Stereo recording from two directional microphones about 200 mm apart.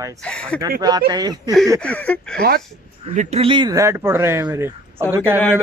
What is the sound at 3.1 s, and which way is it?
Speech, 30° right (ahead or behind).